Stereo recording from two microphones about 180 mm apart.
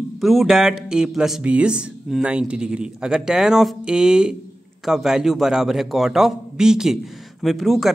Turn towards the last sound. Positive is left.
turn(degrees=0)  # may be behind; listen again after turning